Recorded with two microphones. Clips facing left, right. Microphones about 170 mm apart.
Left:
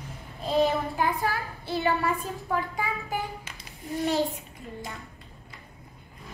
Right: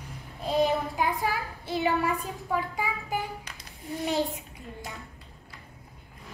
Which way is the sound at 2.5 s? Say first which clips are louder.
Even; 5° right (ahead or behind).